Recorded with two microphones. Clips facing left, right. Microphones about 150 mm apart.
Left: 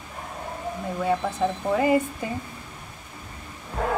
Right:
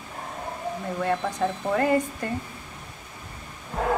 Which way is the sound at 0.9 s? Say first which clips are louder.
Left 2 dB; 5° left (ahead or behind).